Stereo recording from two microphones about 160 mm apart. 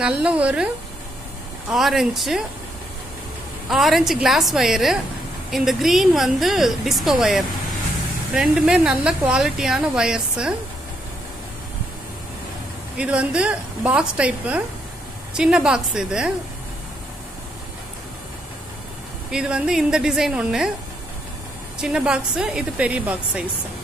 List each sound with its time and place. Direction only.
0.0 s a woman's voice: 10° right (ahead or behind)
1.7 s speech: centre (ahead or behind)
3.6 s speech: centre (ahead or behind)
12.9 s a woman's voice: 5° right (ahead or behind)
19.3 s speech: 5° right (ahead or behind)
21.7 s speech: 5° right (ahead or behind)